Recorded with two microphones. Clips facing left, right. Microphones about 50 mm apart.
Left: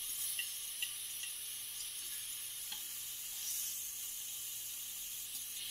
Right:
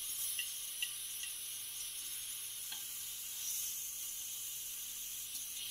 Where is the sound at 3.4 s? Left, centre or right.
Left.